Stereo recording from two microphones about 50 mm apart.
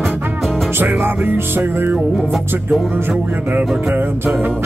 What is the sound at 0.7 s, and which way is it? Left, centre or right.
Music, right.